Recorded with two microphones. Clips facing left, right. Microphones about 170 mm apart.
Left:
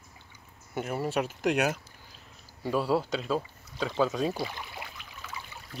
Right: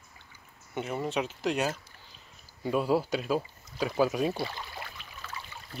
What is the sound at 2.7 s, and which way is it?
Speech, centre (ahead or behind).